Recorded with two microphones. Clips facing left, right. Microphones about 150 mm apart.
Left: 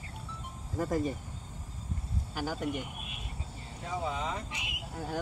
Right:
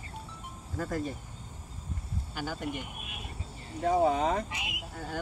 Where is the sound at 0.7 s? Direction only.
15° left (ahead or behind).